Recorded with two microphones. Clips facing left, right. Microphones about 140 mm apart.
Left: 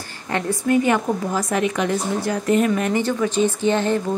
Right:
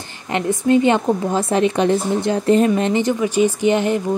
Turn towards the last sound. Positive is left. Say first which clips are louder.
# right 2 dB
turn(degrees=-15)  # may be behind; listen again after turning